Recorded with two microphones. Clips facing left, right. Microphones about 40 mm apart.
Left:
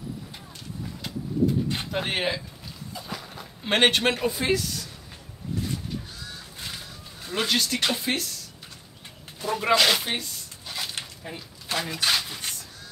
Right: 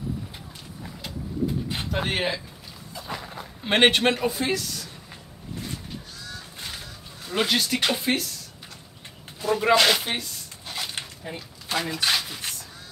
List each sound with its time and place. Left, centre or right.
1.7 s speech: centre
3.1 s dog: centre
3.6 s speech: centre
7.3 s speech: centre
9.4 s speech: centre
10.7 s a sound: centre